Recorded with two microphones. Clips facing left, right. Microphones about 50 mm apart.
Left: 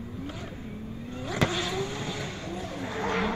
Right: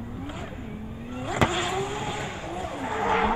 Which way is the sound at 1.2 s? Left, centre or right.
Centre.